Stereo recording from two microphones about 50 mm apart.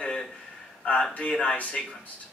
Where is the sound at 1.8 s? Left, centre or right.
Centre.